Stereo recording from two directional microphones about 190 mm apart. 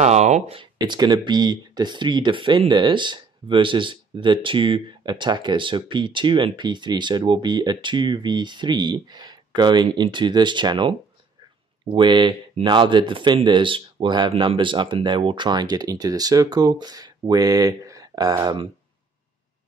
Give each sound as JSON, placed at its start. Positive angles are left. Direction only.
{"t": 0.0, "sound": "speech", "side_deg": -35}